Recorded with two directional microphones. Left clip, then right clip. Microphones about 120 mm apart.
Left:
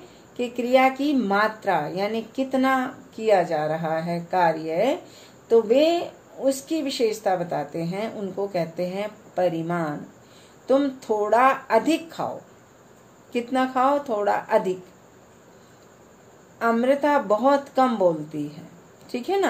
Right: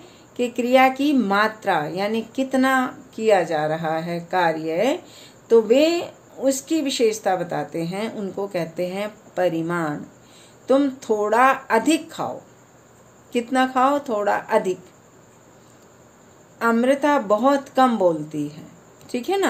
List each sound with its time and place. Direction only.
0.4 s a woman's voice: 40° right (ahead or behind)
13.3 s a woman's voice: 35° right (ahead or behind)
16.5 s a woman's voice: 40° right (ahead or behind)